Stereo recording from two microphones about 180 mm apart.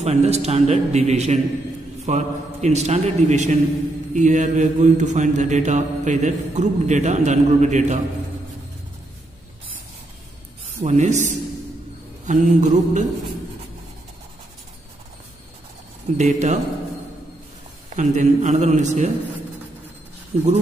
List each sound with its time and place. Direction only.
0.0 s a man's voice: 35° right (ahead or behind)
10.8 s a man's voice: 40° right (ahead or behind)
12.3 s mantra: 45° right (ahead or behind)
16.2 s a man's voice: 40° right (ahead or behind)
17.9 s a man's voice: 40° right (ahead or behind)
20.3 s speech: 35° right (ahead or behind)